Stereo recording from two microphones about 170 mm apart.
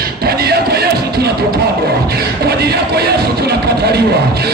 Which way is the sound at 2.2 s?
70° right (ahead or behind).